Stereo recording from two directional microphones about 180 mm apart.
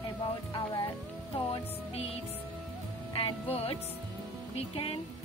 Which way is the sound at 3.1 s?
30° left (ahead or behind).